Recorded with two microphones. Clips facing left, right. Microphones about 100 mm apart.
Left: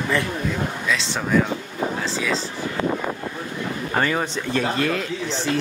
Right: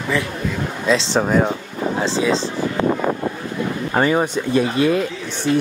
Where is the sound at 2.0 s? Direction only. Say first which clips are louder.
Right 6 dB; 25° right (ahead or behind).